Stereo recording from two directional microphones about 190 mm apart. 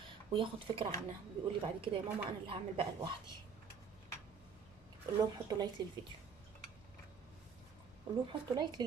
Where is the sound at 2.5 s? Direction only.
30° right (ahead or behind).